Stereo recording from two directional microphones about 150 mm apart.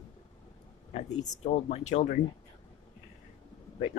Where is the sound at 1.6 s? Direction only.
50° left (ahead or behind).